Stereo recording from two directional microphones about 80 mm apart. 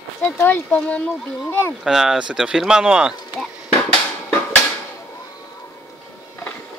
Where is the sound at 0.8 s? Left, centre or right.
Centre.